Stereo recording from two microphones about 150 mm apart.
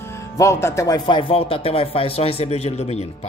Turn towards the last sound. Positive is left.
turn(degrees=45)  # may be behind; listen again after turning